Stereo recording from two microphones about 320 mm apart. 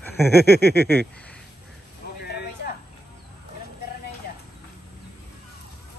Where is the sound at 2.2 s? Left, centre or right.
Left.